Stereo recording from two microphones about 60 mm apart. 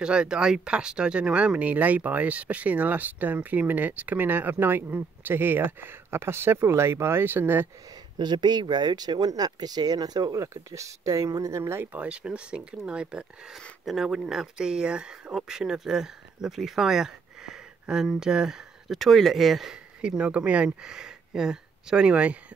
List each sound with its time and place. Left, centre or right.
0.0 s speech: centre; by 7.6 s right
8.9 s speech: right
10.5 s speech: right
11.8 s speech: right
13.8 s speech: centre
18.9 s speech: centre; by 22.4 s right